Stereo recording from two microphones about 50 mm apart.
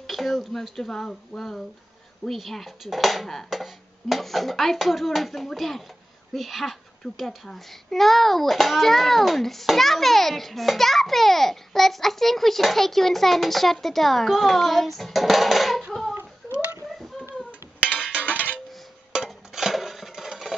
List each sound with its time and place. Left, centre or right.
0.0 s a child's voice: centre
14.3 s hands: centre
18.2 s music: left
19.2 s dishes: centre